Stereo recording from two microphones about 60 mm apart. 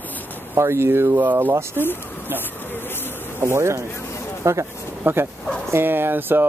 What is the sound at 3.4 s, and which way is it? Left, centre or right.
Speech, right.